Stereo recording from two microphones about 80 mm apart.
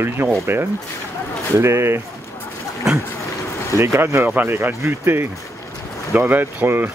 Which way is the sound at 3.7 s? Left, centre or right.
Right.